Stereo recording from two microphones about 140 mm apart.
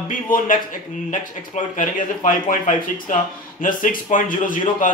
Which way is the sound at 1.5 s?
70° left (ahead or behind).